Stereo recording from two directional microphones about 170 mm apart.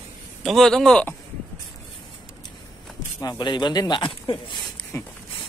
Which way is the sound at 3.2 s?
25° left (ahead or behind).